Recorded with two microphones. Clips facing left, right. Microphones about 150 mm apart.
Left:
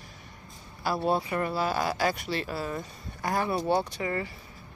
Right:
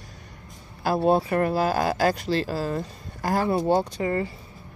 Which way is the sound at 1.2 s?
50° right (ahead or behind).